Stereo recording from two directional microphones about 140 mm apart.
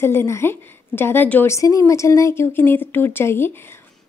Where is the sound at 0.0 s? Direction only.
15° left (ahead or behind).